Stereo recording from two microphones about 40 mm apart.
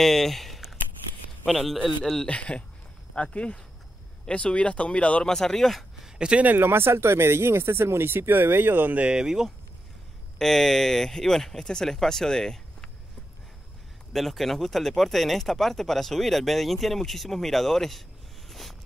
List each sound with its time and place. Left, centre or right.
0.0 s a sound: centre
2.2 s speech: left
5.2 s speech: centre
5.9 s a sound: centre
6.6 s speech: right
9.1 s speech: centre
10.4 s speech: centre
14.1 s speech: centre
18.5 s a sound: centre